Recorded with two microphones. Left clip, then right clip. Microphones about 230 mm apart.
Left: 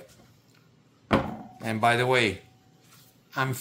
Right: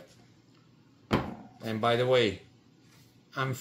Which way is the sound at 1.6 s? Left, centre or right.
Left.